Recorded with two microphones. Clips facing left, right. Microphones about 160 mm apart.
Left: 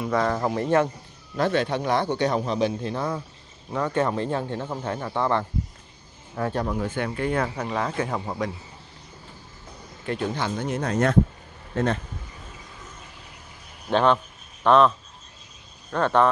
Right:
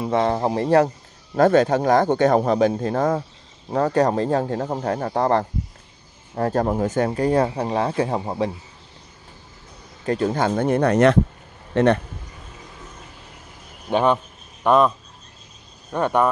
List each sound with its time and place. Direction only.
0.0 s speech: 25° right (ahead or behind)
1.3 s speech: 45° right (ahead or behind); by 8.5 s 30° right (ahead or behind)
10.0 s speech: 40° right (ahead or behind); by 12.0 s 70° right (ahead or behind)
13.8 s speech: 15° right (ahead or behind)